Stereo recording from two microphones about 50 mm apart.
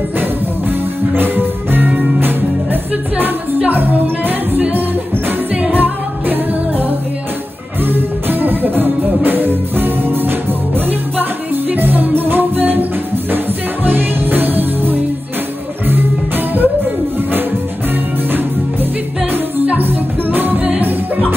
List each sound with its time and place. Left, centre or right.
0.2 s music: right
5.7 s music: right
13.8 s music: right
19.8 s music: right